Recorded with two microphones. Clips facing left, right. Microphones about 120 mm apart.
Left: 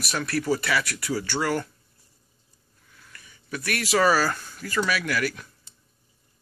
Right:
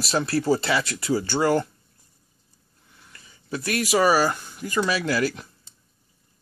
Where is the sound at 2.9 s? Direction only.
25° right (ahead or behind).